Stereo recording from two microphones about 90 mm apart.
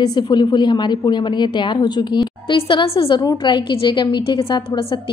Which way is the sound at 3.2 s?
60° left (ahead or behind).